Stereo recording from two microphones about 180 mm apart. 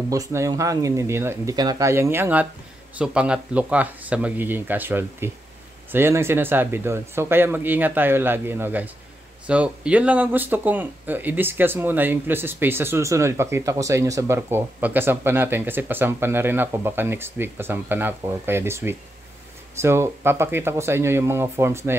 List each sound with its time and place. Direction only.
0.1 s speech: 15° right (ahead or behind)